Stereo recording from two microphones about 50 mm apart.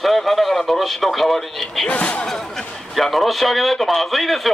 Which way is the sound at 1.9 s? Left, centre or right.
Left.